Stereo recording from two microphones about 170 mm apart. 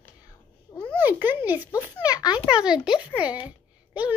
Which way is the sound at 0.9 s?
10° right (ahead or behind).